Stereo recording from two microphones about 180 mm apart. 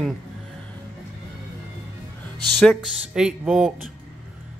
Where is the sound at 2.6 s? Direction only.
Centre (ahead or behind).